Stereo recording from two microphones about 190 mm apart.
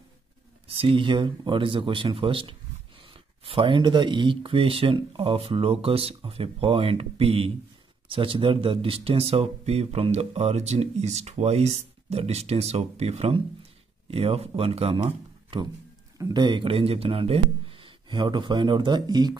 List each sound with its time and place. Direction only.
0.7 s speech: 30° right (ahead or behind)